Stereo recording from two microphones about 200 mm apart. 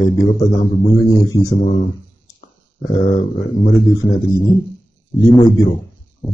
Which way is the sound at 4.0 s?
20° left (ahead or behind).